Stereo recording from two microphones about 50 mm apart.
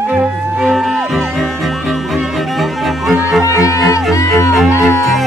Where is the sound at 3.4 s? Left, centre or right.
Left.